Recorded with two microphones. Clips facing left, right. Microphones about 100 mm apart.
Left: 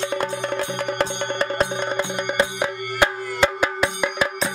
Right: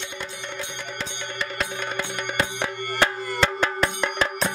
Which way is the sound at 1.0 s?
45° left (ahead or behind).